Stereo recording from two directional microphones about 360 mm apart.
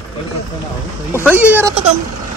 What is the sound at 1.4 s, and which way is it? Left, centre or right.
Speech, centre.